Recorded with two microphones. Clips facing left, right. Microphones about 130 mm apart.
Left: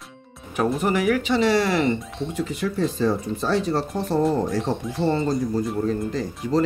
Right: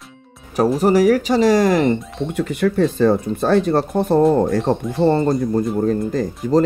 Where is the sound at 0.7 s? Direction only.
35° right (ahead or behind).